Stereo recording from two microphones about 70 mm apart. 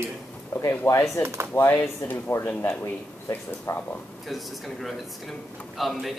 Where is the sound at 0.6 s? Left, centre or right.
Left.